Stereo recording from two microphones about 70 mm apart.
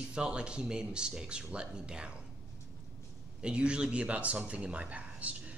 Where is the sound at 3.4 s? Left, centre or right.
Centre.